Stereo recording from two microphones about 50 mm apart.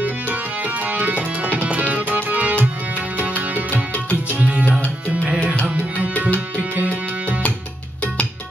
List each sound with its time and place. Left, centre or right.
0.0 s tabla: right
1.6 s music: right
3.7 s music: left
4.4 s tabla: right
6.6 s tabla: right